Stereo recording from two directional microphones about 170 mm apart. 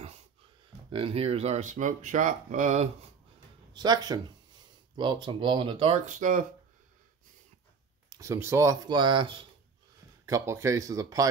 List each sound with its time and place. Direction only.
0.9 s speech: 35° right (ahead or behind)
3.7 s speech: 25° right (ahead or behind)
6.0 s speech: 50° right (ahead or behind)
8.1 s speech: 15° right (ahead or behind)
10.2 s speech: 15° right (ahead or behind)